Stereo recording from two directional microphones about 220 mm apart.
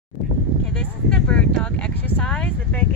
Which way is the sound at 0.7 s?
5° left (ahead or behind).